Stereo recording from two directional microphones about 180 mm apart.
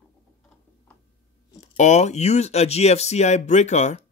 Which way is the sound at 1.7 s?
40° left (ahead or behind).